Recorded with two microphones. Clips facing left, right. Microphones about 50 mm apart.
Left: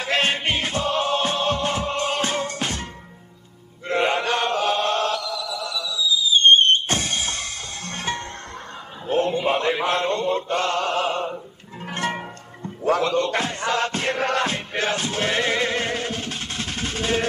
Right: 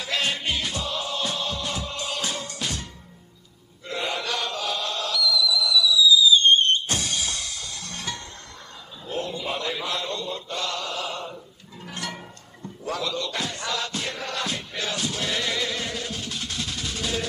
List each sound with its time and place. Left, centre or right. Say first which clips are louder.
0.0 s music: left 5 dB; left
3.8 s chant: left 8 dB; left
9.0 s mantra: left 9 dB; left